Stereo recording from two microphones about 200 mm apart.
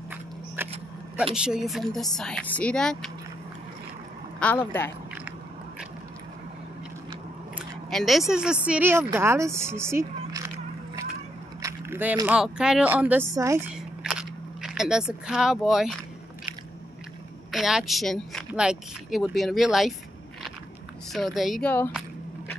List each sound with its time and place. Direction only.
0.6 s vehicle: 10° right (ahead or behind)
1.3 s speech: 5° right (ahead or behind)
4.4 s speech: 10° left (ahead or behind)
7.5 s a sound: centre (ahead or behind)
8.3 s speech: 5° right (ahead or behind)
11.6 s vehicle: 10° right (ahead or behind)
12.3 s speech: 5° right (ahead or behind)
13.7 s biting: centre (ahead or behind)
17.5 s speech: centre (ahead or behind)
21.1 s speech: centre (ahead or behind)